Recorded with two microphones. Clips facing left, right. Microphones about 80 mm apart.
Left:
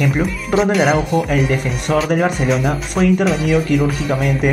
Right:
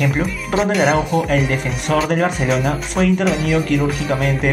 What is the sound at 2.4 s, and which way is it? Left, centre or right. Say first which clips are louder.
Speech: left 1 dB; centre.